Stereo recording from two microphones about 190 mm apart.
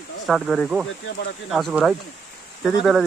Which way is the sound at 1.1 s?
65° left (ahead or behind).